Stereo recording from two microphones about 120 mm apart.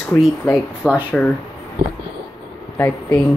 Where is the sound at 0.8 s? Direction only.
10° right (ahead or behind).